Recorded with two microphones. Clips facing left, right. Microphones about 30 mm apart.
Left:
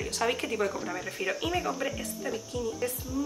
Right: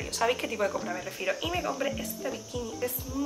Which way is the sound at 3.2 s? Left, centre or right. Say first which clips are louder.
Even; right.